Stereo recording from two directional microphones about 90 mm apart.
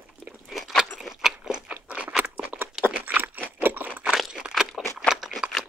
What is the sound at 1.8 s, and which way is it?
Crunch, 20° right (ahead or behind).